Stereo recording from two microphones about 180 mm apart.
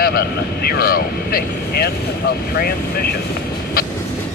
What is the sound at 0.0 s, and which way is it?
Speech, 60° left (ahead or behind).